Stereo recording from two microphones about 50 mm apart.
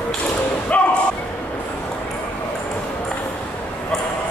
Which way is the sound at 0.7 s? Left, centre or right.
Left.